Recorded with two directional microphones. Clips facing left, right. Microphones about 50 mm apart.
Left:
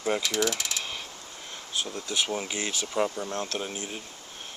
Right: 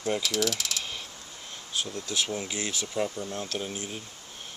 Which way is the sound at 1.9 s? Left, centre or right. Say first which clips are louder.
Left 2 dB; centre.